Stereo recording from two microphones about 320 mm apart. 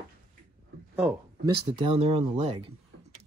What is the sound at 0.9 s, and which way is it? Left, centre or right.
Speech, centre.